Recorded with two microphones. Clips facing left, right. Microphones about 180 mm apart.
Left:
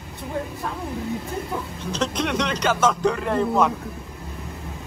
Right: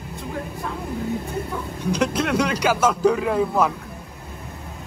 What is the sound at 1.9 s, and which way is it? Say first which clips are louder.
Speech: right 3 dB; 10° right (ahead or behind).